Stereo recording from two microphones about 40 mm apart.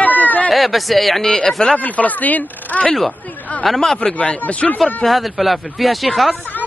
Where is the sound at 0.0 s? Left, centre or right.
Left.